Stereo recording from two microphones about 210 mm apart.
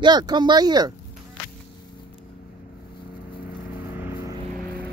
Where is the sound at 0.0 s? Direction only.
20° right (ahead or behind).